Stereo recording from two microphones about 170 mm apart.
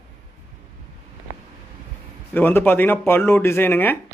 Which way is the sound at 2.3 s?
10° left (ahead or behind).